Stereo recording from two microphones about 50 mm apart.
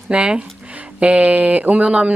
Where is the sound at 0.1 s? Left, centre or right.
Right.